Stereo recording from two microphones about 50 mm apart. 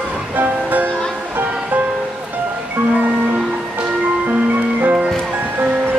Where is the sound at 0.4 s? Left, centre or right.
Right.